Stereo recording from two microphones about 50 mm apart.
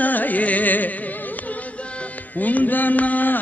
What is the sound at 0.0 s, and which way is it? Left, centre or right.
Music, left.